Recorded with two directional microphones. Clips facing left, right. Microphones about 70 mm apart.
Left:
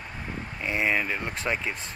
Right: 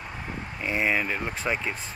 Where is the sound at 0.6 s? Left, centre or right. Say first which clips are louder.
Right 1 dB; centre.